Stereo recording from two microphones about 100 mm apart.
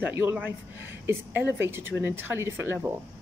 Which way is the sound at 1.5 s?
25° right (ahead or behind).